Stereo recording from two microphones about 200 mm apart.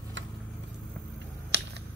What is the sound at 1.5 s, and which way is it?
Finger snapping, 55° right (ahead or behind).